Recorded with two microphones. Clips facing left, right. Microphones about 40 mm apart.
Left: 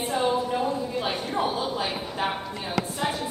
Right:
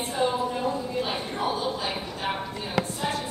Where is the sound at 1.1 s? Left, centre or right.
Centre.